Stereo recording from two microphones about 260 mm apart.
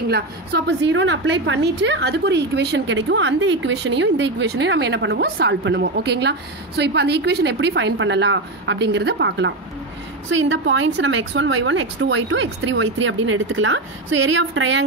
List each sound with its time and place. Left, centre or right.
0.1 s a woman's voice: right